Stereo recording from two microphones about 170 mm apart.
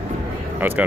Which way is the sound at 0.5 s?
10° right (ahead or behind).